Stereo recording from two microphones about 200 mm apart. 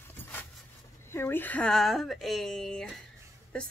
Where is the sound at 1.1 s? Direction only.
10° left (ahead or behind).